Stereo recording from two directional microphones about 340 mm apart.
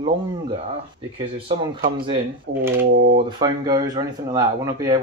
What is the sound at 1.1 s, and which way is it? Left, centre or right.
Speech, centre.